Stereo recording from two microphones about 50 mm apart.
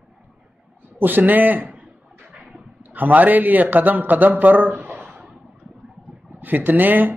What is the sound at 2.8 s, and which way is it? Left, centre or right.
A man's voice, right.